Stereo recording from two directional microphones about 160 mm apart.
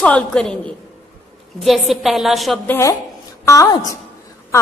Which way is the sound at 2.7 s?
15° left (ahead or behind).